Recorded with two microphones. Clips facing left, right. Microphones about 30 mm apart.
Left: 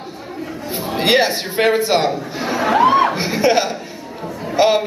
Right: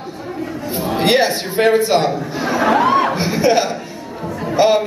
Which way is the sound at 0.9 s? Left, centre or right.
Centre.